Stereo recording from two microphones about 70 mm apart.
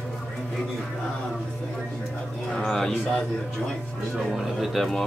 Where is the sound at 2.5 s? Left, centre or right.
Centre.